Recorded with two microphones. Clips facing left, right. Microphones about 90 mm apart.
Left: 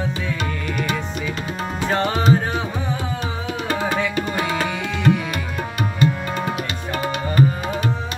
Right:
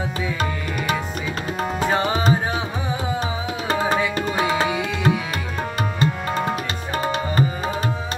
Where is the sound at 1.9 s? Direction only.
10° right (ahead or behind).